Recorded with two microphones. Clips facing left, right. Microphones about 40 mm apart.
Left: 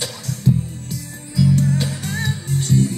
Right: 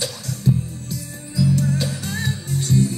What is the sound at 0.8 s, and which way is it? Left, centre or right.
Music, left.